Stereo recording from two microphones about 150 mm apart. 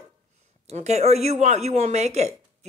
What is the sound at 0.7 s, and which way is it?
Speech, 45° right (ahead or behind).